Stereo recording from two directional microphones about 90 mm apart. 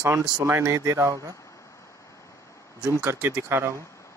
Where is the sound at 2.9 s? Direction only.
30° right (ahead or behind).